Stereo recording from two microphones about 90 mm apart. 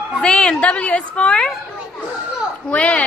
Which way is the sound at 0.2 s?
10° left (ahead or behind).